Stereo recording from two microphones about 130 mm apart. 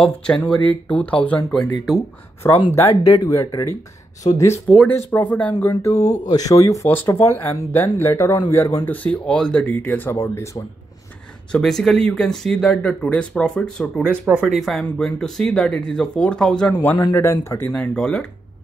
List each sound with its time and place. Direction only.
0.0 s speech: 5° left (ahead or behind); by 3.7 s 25° left (ahead or behind)
4.2 s speech: 45° left (ahead or behind)
4.8 s speech: 15° left (ahead or behind)
6.2 s speech: 30° left (ahead or behind)
8.8 s speech: 10° left (ahead or behind)
11.5 s speech: 5° left (ahead or behind)
17.1 s speech: 20° left (ahead or behind)